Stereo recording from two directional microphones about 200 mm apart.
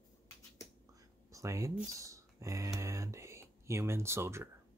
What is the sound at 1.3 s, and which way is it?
Speech, 15° right (ahead or behind).